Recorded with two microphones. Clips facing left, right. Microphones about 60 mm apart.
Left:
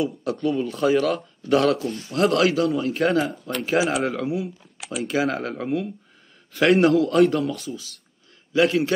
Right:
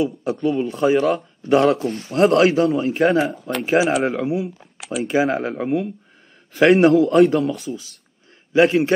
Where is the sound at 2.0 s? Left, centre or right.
Right.